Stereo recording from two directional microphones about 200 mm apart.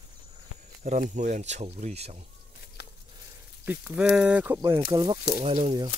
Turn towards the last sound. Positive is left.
turn(degrees=-25)  # may be behind; listen again after turning